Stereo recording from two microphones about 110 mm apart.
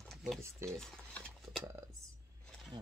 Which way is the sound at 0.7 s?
5° left (ahead or behind).